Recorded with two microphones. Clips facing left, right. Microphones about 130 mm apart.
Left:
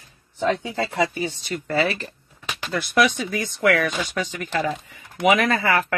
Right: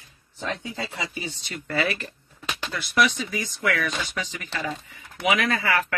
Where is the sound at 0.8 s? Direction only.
55° left (ahead or behind).